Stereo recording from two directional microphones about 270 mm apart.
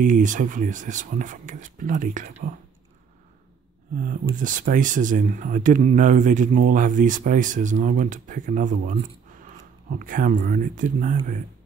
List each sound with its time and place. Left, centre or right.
0.0 s speech: right
4.0 s speech: right